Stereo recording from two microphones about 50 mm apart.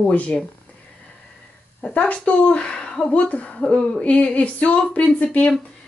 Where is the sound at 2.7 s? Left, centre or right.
Centre.